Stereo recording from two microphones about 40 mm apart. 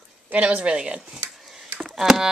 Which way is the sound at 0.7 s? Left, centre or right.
Centre.